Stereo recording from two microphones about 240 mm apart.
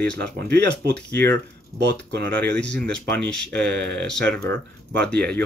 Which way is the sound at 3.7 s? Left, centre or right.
Right.